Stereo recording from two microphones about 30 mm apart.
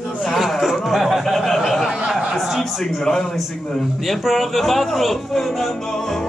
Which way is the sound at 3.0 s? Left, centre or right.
Centre.